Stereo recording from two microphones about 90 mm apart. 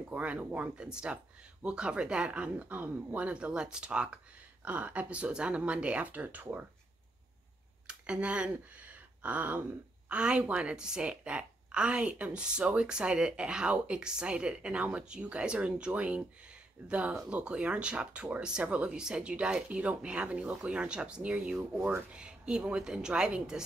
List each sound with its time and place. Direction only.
0.1 s speech: 15° right (ahead or behind)
7.8 s speech: 10° right (ahead or behind)